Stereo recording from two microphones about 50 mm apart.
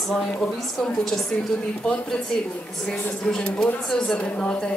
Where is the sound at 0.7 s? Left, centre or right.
Centre.